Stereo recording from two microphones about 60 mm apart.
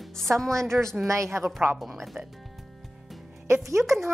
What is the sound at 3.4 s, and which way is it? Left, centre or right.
Speech, right.